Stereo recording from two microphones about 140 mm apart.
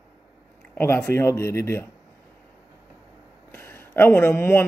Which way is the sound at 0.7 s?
15° left (ahead or behind).